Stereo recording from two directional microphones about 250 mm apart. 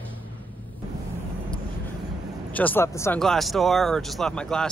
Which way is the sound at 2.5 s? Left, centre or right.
Centre.